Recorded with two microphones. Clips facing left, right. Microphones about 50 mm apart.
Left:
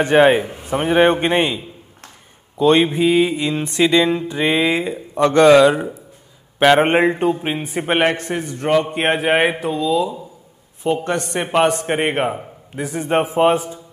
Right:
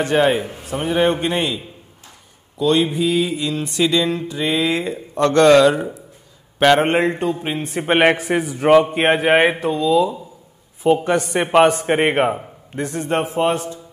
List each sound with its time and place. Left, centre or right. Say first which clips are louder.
0.0 s mantra: left 4 dB; left
0.5 s a man's voice: left 3 dB; left
2.6 s mantra: left 3 dB; left
4.7 s speech: left 1 dB; centre
8.0 s a man's voice: right 3 dB; centre